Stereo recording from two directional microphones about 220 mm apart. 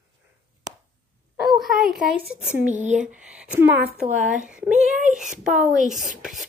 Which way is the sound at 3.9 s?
35° right (ahead or behind).